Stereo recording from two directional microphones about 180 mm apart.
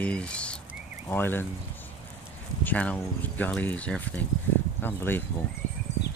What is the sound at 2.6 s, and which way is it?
Speech, 10° left (ahead or behind).